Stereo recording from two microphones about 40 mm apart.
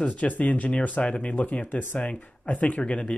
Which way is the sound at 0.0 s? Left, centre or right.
Left.